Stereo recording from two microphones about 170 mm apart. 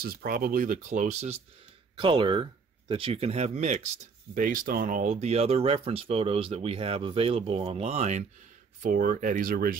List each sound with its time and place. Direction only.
0.0 s speech: 60° right (ahead or behind); by 1.4 s 40° right (ahead or behind)
2.0 s speech: 30° right (ahead or behind)
4.4 s speech: 55° right (ahead or behind)
8.8 s speech: 55° right (ahead or behind)